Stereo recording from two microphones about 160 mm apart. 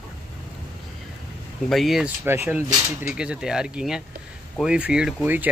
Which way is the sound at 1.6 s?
Centre (ahead or behind).